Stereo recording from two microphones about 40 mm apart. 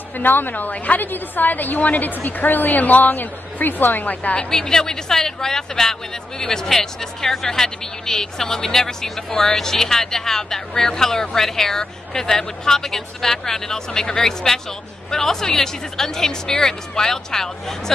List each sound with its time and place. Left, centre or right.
0.2 s a woman's voice: left
4.4 s speech: centre